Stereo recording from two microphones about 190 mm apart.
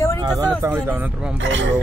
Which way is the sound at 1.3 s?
75° right (ahead or behind).